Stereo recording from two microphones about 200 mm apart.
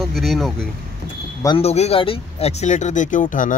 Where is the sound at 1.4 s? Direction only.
30° left (ahead or behind).